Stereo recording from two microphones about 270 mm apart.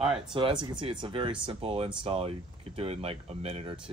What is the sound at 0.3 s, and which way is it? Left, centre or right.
Speech, centre.